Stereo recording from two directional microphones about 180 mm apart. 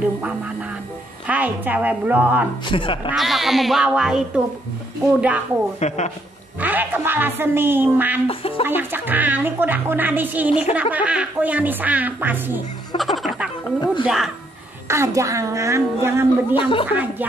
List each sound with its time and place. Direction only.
0.0 s music: 5° right (ahead or behind)
1.2 s speech: 10° right (ahead or behind)
2.6 s speech: 30° left (ahead or behind)
3.1 s speech: centre (ahead or behind)
5.8 s speech: 40° left (ahead or behind)
6.6 s speech: 10° right (ahead or behind)
8.3 s speech: 30° left (ahead or behind)
8.6 s speech: 10° right (ahead or behind)
12.9 s music: centre (ahead or behind)
14.0 s speech: centre (ahead or behind)
14.9 s speech: 15° right (ahead or behind)
16.5 s speech: 30° left (ahead or behind)